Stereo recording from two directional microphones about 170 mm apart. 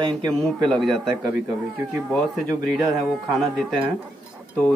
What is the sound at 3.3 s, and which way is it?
Speech, centre (ahead or behind).